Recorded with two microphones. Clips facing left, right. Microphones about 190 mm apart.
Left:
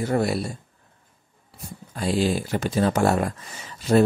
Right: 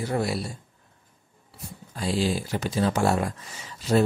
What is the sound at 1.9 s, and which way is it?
Speech, 55° left (ahead or behind).